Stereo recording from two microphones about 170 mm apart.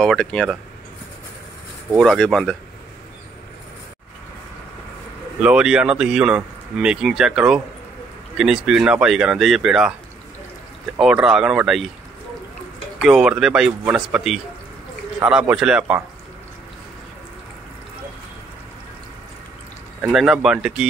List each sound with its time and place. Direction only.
0.0 s speech: 5° left (ahead or behind)
1.9 s speech: centre (ahead or behind)
5.4 s speech: 5° right (ahead or behind)
11.0 s speech: 5° right (ahead or behind)
13.0 s speech: 5° right (ahead or behind)
20.0 s speech: 5° right (ahead or behind)